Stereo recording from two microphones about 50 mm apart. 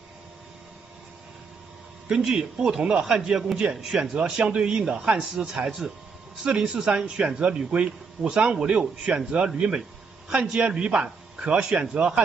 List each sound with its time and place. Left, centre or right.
2.0 s a man's voice: centre